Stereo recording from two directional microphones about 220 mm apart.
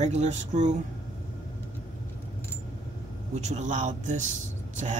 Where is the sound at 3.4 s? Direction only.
35° right (ahead or behind).